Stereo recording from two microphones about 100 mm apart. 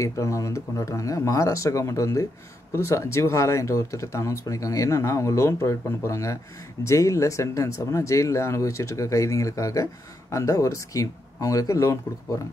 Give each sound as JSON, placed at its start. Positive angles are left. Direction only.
{"t": 0.0, "sound": "speech", "side_deg": 30}